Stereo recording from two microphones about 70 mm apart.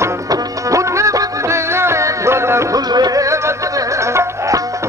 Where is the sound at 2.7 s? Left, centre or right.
Right.